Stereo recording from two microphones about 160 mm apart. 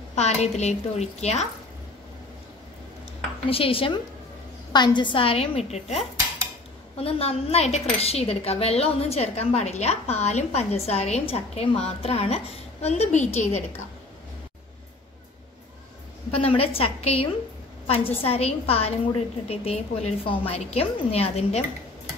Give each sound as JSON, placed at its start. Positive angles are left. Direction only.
{"t": 0.1, "sound": "a woman's voice", "side_deg": 45}
{"t": 3.4, "sound": "a woman's voice", "side_deg": 35}
{"t": 16.3, "sound": "speech", "side_deg": 35}